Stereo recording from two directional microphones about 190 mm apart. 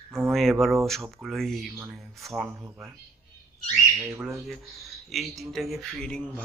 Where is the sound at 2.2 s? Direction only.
Centre (ahead or behind).